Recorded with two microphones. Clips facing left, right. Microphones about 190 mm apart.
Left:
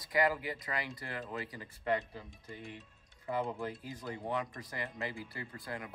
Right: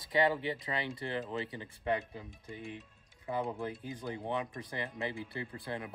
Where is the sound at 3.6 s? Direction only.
25° right (ahead or behind).